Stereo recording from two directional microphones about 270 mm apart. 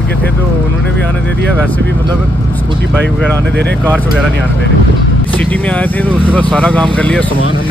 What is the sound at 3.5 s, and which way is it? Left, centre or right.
Speech, right.